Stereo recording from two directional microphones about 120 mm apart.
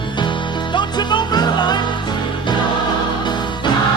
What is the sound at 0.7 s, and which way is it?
Music, 40° left (ahead or behind).